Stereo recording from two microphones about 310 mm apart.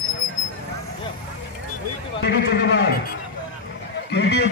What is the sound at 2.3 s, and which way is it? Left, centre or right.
Speech, left.